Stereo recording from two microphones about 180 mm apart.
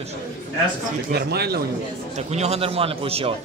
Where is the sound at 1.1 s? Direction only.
65° right (ahead or behind).